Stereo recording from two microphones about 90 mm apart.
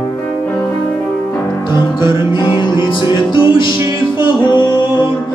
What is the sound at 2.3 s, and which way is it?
Music, 60° left (ahead or behind).